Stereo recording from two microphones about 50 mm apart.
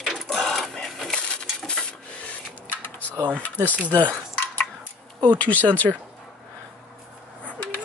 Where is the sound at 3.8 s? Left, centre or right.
Right.